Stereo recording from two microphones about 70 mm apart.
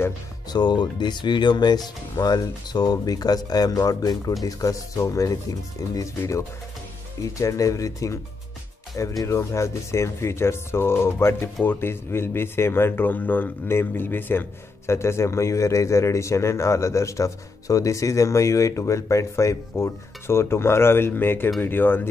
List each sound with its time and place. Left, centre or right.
0.5 s speech: left
2.1 s speech: left
7.3 s speech: left
14.9 s speech: left